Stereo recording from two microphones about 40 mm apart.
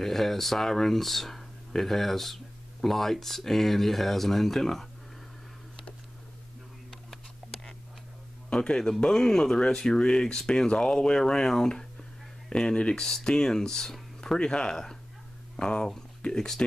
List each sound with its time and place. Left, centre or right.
0.0 s speech: centre
6.9 s a sound: centre
8.5 s speech: left
13.0 s speech: centre
14.4 s speech: left